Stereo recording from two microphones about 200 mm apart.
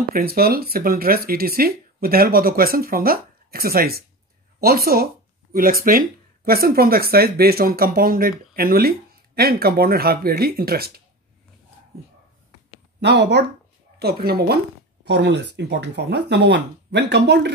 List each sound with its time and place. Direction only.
0.1 s speech: 50° right (ahead or behind)
13.0 s speech: 60° right (ahead or behind)